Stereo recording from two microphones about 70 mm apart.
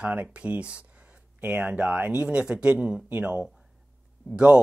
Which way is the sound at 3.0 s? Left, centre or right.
Right.